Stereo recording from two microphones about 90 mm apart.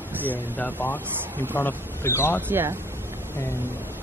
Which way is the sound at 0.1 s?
20° right (ahead or behind).